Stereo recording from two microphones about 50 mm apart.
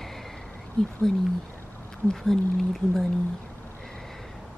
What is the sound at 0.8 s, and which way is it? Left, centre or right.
Speech, centre.